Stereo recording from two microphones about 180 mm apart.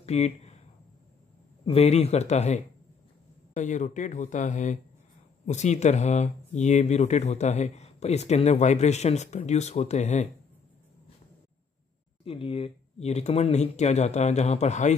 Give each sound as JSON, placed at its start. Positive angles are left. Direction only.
{"t": 0.0, "sound": "speech", "side_deg": 35}
{"t": 1.7, "sound": "speech", "side_deg": 35}
{"t": 12.3, "sound": "speech", "side_deg": 30}